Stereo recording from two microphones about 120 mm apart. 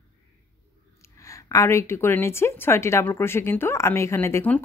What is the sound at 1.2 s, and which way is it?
Speech, 25° left (ahead or behind).